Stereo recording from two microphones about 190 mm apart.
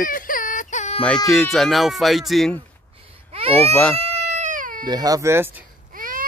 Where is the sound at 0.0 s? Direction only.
45° left (ahead or behind).